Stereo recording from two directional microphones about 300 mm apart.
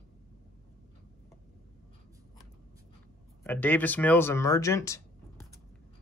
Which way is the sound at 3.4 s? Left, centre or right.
Centre.